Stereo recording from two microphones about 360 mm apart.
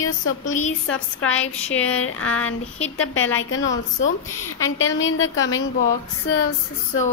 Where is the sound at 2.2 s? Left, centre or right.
Centre.